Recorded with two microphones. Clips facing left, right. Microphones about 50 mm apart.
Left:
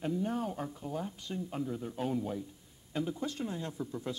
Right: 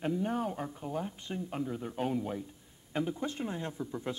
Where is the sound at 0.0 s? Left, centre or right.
Right.